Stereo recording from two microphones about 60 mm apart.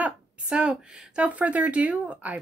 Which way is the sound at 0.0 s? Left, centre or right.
Centre.